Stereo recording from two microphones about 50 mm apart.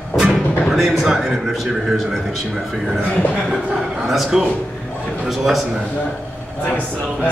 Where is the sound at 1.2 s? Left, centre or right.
Centre.